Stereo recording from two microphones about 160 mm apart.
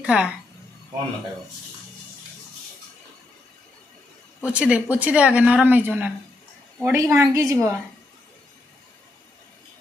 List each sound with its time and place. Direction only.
0.0 s a woman's voice: 5° right (ahead or behind)
4.4 s a woman's voice: 5° right (ahead or behind)